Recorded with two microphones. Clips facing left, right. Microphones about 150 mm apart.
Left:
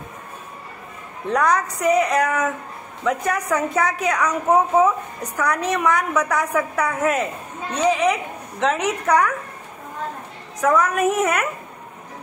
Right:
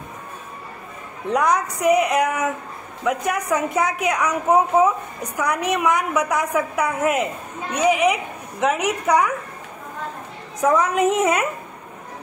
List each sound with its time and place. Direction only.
1.2 s a woman's voice: 15° right (ahead or behind)
10.7 s a woman's voice: 20° right (ahead or behind)